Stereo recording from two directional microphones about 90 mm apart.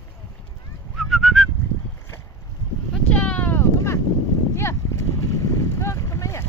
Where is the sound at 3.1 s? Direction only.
15° left (ahead or behind).